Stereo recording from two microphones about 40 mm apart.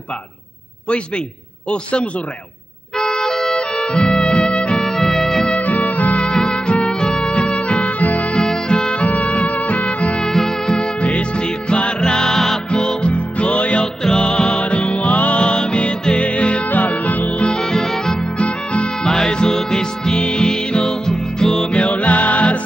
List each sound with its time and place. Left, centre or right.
1.7 s a man's voice: left
3.0 s music: centre
4.8 s music: centre
5.6 s music: left
6.3 s music: left
8.4 s music: centre; by 10.2 s left
10.2 s music: centre
10.8 s music: left
13.1 s music: left
14.0 s music: centre; by 15.4 s left
15.4 s music: left
17.4 s music: centre
18.4 s music: left
21.7 s music: left